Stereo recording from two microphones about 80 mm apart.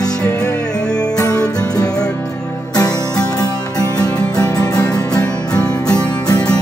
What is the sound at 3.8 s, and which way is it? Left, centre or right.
Music, left.